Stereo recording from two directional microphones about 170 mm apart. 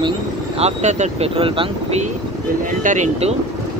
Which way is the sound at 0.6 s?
40° right (ahead or behind).